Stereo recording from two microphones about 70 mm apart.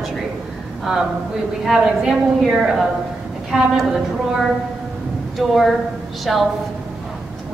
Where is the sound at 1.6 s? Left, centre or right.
Centre.